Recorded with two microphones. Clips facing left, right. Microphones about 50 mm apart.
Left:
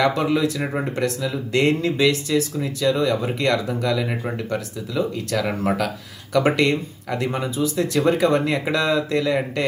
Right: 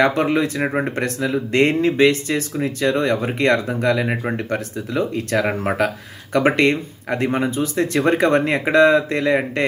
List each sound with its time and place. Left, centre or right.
0.0 s speech: right